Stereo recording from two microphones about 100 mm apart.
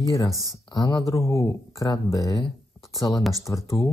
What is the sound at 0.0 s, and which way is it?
Speech, 35° left (ahead or behind).